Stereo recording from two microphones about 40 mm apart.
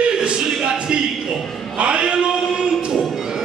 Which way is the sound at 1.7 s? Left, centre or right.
Right.